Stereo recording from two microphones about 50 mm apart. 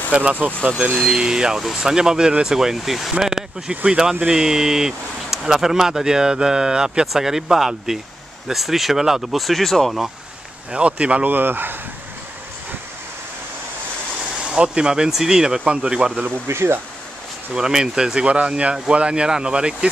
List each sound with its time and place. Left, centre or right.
0.1 s speech: right
1.0 s speech: centre
10.7 s speech: right
11.2 s speech: right
14.4 s speech: centre
16.3 s speech: right
17.6 s speech: centre